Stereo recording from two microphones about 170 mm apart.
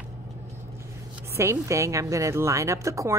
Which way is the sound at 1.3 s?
15° right (ahead or behind).